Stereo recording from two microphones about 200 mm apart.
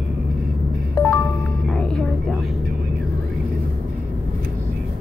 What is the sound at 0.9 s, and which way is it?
Music, 15° left (ahead or behind).